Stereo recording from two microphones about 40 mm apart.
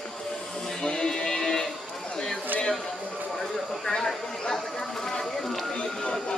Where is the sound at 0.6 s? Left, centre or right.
Centre.